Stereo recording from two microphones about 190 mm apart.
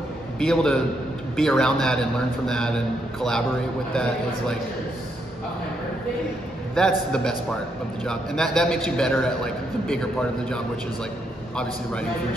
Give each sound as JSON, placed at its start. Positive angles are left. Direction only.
{"t": 0.4, "sound": "a man's voice", "side_deg": 5}
{"t": 6.7, "sound": "a man's voice", "side_deg": 5}